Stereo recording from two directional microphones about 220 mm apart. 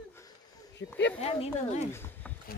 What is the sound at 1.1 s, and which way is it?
Speech, 30° left (ahead or behind).